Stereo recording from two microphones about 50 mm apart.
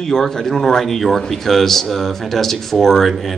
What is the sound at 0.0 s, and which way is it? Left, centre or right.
A man's voice, centre.